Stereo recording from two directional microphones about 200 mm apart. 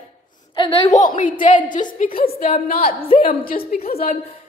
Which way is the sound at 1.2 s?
40° left (ahead or behind).